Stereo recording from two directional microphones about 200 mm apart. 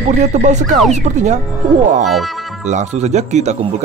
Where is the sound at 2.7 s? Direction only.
35° right (ahead or behind).